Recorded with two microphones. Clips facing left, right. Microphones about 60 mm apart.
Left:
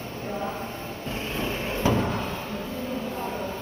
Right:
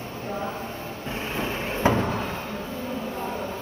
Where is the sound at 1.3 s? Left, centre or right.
Centre.